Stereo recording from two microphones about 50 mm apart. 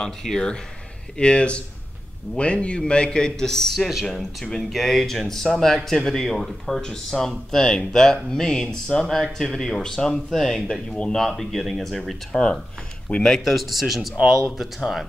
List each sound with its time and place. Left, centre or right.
0.0 s a man's voice: centre
9.0 s speech: centre
13.4 s speech: centre